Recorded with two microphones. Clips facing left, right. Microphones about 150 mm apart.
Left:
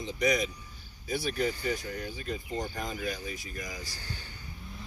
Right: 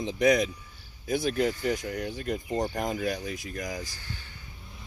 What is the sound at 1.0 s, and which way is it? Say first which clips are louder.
Cricket: right 5 dB; 50° right (ahead or behind).